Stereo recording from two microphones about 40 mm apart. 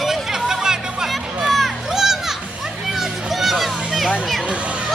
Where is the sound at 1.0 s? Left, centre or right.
Centre.